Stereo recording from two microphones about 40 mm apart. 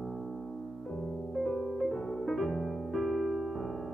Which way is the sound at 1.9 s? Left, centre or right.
Centre.